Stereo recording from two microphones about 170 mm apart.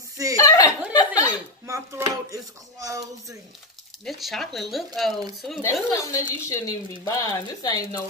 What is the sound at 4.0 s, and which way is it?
Speech, centre (ahead or behind).